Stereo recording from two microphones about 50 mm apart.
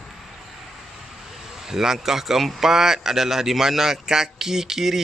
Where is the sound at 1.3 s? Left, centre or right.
Centre.